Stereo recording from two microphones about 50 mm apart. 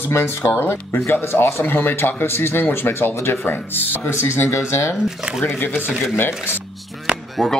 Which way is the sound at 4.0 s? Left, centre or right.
Left.